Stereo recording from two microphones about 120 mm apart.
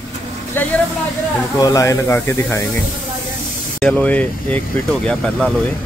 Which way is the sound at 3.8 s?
15° left (ahead or behind).